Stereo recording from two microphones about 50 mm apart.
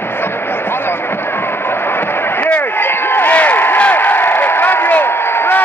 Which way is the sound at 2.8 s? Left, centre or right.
Left.